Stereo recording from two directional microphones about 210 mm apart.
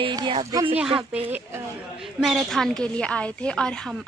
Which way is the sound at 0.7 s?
5° right (ahead or behind).